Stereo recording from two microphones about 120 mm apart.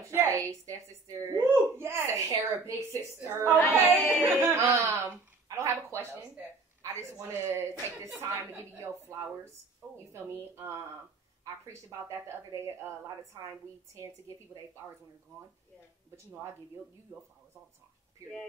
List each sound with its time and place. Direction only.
0.0 s a woman's voice: 25° right (ahead or behind)
4.0 s speech: 15° left (ahead or behind)
4.4 s a woman's voice: 20° right (ahead or behind)
5.6 s a sound: 25° right (ahead or behind)
7.0 s a woman's voice: 25° right (ahead or behind)
10.1 s a woman's voice: 20° right (ahead or behind)